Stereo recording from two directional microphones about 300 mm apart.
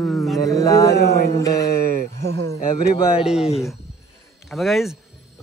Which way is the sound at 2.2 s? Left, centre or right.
Right.